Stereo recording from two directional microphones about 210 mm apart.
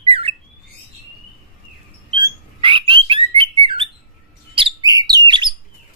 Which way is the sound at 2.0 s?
25° right (ahead or behind).